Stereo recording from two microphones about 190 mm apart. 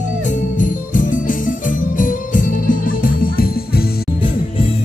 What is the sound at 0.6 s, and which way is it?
Jingle bell, 45° left (ahead or behind).